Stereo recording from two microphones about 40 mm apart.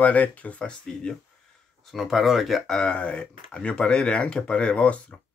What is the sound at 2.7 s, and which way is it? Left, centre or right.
Speech, left.